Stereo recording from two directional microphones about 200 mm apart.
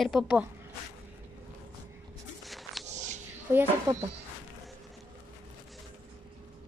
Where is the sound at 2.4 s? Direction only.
Centre (ahead or behind).